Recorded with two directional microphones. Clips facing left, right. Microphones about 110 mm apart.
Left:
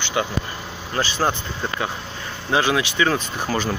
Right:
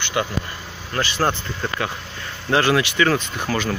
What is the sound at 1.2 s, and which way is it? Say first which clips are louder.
Speech: right 1 dB; 10° left (ahead or behind).